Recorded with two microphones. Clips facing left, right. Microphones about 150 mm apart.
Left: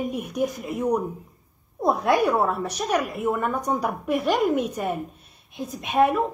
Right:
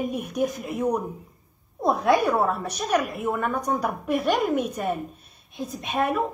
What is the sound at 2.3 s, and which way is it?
A woman's voice, 5° left (ahead or behind).